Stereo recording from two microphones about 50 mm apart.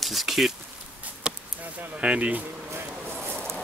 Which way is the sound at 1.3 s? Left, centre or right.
Centre.